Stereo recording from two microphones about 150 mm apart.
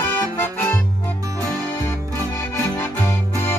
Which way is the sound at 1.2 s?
20° right (ahead or behind).